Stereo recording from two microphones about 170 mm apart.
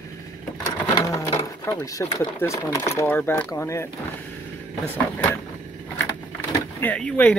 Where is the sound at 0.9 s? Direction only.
20° left (ahead or behind).